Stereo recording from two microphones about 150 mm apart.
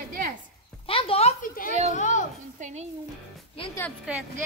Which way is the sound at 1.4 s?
65° left (ahead or behind).